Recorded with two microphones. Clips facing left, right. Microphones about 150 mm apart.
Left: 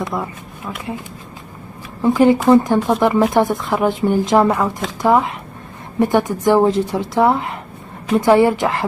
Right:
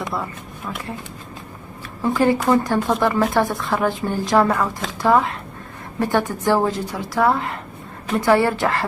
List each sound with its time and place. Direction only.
0.1 s speech: 10° left (ahead or behind)
2.0 s a woman's voice: 20° left (ahead or behind)